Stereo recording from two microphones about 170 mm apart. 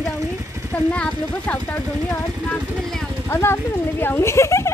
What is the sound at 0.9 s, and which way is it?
Speech, 10° left (ahead or behind).